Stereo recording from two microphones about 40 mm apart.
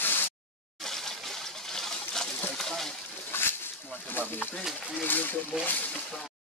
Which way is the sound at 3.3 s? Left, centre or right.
Left.